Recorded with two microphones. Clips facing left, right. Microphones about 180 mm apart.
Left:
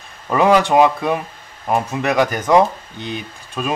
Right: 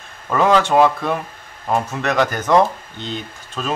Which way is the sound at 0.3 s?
15° left (ahead or behind).